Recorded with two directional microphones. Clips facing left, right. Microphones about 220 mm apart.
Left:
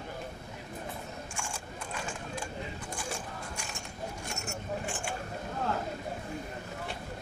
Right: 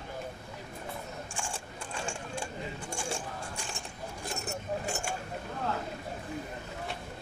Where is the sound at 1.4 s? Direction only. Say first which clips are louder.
Right 1 dB; 30° right (ahead or behind).